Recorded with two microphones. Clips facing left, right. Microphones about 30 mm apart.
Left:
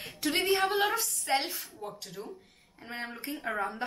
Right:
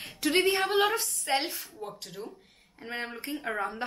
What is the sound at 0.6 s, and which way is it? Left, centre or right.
A woman's voice, centre.